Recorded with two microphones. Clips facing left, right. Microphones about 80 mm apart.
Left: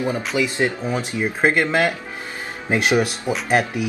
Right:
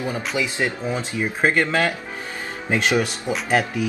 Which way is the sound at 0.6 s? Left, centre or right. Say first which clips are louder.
Left 2 dB; left.